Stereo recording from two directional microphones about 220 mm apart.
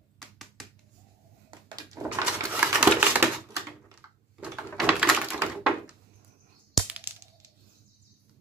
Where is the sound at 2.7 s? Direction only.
5° right (ahead or behind).